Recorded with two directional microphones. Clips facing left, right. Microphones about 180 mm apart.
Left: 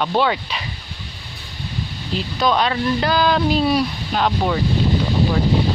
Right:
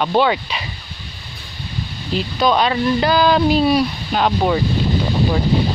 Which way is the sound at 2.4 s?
10° right (ahead or behind).